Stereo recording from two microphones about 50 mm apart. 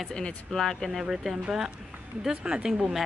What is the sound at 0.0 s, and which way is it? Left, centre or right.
Speech, centre.